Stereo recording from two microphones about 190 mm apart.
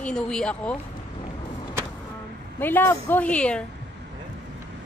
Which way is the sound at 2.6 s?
10° left (ahead or behind).